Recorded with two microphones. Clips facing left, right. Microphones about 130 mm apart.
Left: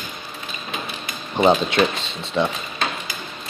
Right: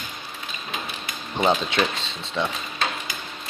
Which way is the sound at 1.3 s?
10° left (ahead or behind).